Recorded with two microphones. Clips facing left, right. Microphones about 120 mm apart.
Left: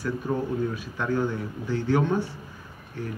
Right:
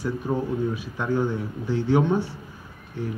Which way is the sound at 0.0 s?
5° right (ahead or behind).